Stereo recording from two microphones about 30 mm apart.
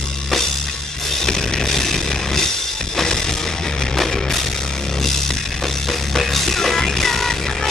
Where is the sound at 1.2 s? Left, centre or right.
Centre.